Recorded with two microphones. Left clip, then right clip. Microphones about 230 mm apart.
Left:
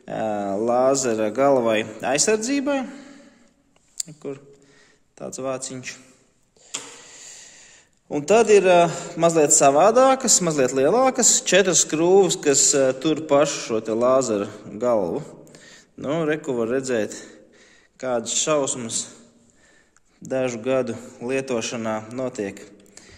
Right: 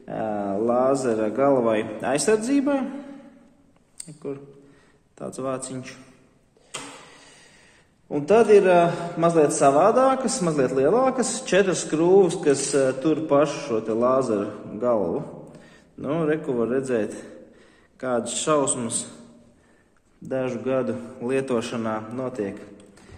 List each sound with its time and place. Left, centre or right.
0.0 s speech: left
4.0 s a sound: left
5.1 s a man's voice: left
8.1 s a man's voice: left
20.2 s a man's voice: left